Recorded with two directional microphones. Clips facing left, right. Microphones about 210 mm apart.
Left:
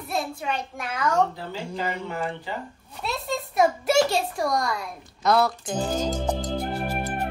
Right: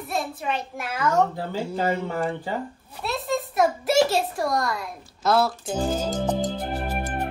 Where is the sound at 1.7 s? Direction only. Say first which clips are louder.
Right 4 dB; 45° right (ahead or behind).